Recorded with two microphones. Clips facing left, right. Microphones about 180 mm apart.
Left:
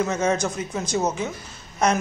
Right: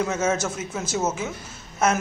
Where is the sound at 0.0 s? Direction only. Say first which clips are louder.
Left 1 dB; 5° right (ahead or behind).